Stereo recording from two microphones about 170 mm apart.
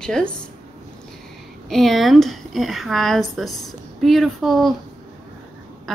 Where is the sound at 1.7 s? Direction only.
Centre (ahead or behind).